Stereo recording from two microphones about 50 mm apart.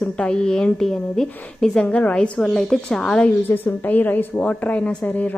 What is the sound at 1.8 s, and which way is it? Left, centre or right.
Speech, left.